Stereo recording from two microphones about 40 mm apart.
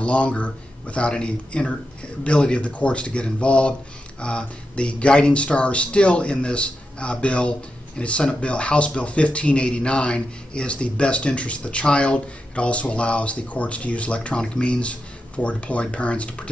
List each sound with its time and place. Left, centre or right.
0.0 s speech: left